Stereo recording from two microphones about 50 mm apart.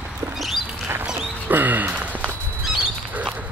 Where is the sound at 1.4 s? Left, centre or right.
Right.